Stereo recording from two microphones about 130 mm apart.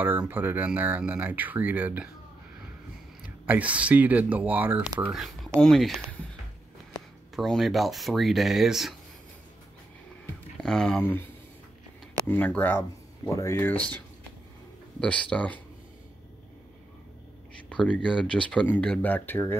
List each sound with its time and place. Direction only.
0.3 s speech: 15° right (ahead or behind)
3.4 s speech: 10° right (ahead or behind)
5.1 s speech: centre (ahead or behind)
7.3 s speech: centre (ahead or behind)
10.6 s speech: 5° left (ahead or behind)
11.0 s speech: 15° left (ahead or behind)
12.3 s speech: 15° left (ahead or behind)
17.6 s speech: 10° left (ahead or behind)